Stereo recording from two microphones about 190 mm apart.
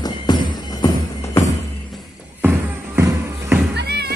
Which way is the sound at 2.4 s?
10° right (ahead or behind).